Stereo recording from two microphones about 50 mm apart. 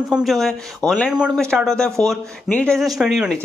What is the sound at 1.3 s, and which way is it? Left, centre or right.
Speech, centre.